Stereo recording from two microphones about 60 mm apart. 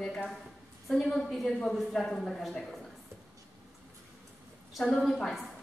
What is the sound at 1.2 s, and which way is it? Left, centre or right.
A woman's voice, centre.